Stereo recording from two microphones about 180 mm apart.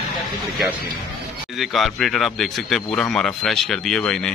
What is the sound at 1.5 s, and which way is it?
Speech, centre (ahead or behind).